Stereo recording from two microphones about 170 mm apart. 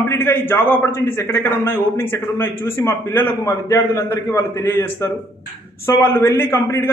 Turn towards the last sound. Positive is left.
turn(degrees=15)  # may be behind; listen again after turning